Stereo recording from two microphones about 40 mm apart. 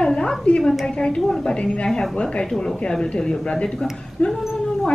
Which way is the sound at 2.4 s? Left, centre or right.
Centre.